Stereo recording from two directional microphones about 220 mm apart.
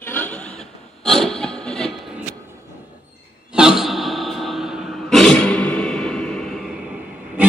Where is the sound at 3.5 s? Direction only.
5° right (ahead or behind).